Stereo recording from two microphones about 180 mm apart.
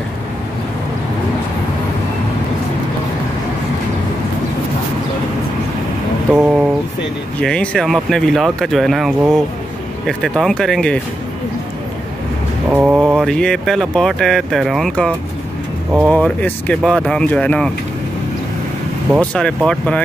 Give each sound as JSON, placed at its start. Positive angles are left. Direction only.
{"t": 6.3, "sound": "a sound", "side_deg": -5}
{"t": 7.3, "sound": "speech", "side_deg": 5}
{"t": 12.7, "sound": "speech", "side_deg": -5}
{"t": 13.1, "sound": "speech", "side_deg": 5}
{"t": 19.1, "sound": "speech", "side_deg": 5}